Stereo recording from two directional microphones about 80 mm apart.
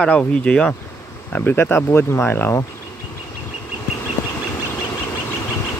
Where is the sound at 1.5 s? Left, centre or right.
Left.